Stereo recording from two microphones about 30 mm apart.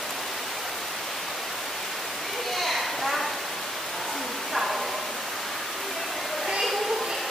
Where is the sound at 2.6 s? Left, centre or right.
Centre.